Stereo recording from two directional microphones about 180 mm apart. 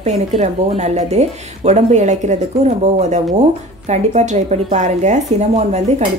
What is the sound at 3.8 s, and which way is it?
A woman's voice, 40° right (ahead or behind).